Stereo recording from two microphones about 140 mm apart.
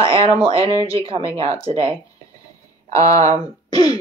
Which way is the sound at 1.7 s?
40° right (ahead or behind).